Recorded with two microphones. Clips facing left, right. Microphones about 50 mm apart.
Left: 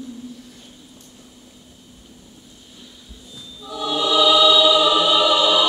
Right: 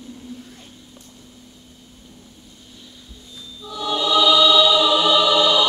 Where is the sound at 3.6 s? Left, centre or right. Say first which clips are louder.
Left 1 dB; centre.